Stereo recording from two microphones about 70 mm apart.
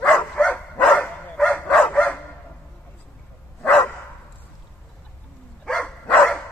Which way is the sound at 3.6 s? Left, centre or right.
Left.